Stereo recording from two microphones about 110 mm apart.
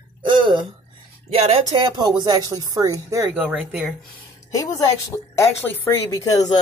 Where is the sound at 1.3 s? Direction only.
65° right (ahead or behind).